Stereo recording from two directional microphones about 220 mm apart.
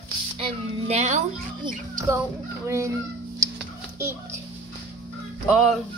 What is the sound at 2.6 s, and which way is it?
Speech, 15° right (ahead or behind).